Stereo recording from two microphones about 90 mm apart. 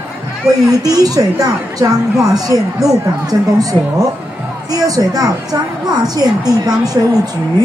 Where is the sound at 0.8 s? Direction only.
40° right (ahead or behind).